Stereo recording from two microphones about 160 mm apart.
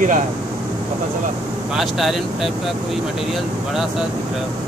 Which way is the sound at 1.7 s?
Centre (ahead or behind).